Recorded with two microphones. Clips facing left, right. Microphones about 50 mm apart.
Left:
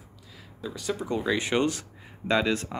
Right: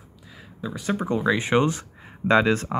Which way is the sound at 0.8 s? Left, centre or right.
Right.